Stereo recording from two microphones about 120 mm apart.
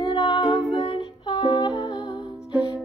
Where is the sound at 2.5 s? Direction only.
10° right (ahead or behind).